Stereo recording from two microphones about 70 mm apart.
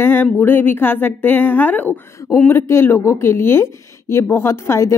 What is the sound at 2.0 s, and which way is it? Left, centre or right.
Speech, left.